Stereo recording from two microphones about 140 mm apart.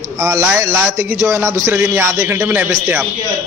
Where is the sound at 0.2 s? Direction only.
25° right (ahead or behind).